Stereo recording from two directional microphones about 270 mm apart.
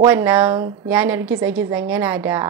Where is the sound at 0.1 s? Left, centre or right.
Centre.